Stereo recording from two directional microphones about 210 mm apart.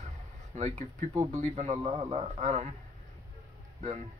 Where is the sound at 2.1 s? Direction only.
30° right (ahead or behind).